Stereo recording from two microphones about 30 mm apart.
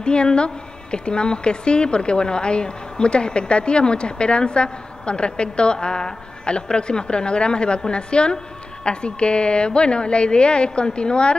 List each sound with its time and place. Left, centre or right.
0.0 s speech: left